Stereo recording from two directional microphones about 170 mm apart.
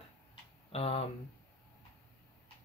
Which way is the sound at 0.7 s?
35° left (ahead or behind).